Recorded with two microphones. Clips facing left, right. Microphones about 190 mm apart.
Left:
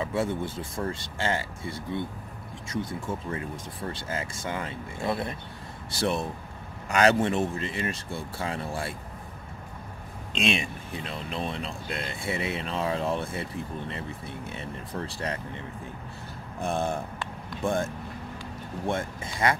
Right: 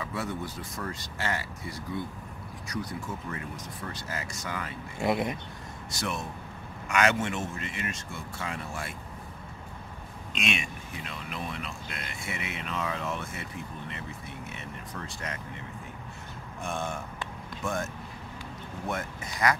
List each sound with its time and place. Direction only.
0.0 s speech: 25° left (ahead or behind)
5.0 s speech: 15° right (ahead or behind)
5.9 s speech: 30° left (ahead or behind)
10.3 s speech: 30° left (ahead or behind)
16.5 s speech: 35° left (ahead or behind)
18.9 s speech: 30° left (ahead or behind)